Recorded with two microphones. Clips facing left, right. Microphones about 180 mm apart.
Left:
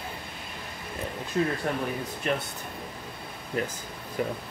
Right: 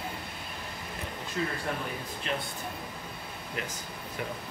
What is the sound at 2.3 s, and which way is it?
Speech, 50° left (ahead or behind).